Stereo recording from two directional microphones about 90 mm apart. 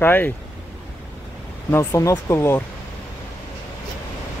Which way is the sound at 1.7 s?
35° left (ahead or behind).